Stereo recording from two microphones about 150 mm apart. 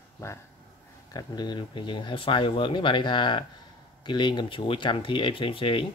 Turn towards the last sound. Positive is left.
turn(degrees=35)  # may be behind; listen again after turning